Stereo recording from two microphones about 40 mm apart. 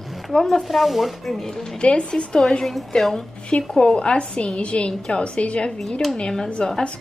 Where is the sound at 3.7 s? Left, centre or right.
Left.